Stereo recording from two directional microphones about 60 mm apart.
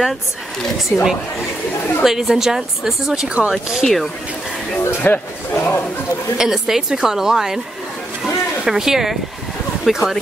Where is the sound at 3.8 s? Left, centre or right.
Centre.